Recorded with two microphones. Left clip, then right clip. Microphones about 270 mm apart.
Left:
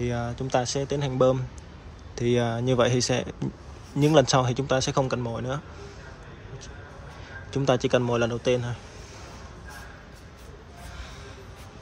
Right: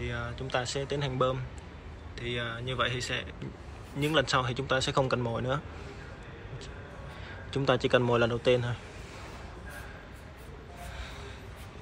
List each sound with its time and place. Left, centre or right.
0.0 s speech: centre
7.5 s speech: centre